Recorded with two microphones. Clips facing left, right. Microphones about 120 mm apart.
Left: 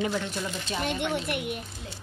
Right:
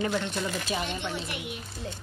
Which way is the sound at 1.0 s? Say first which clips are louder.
Left 5 dB; 60° left (ahead or behind).